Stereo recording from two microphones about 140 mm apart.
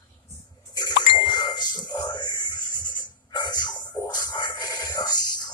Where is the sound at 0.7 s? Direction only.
30° left (ahead or behind).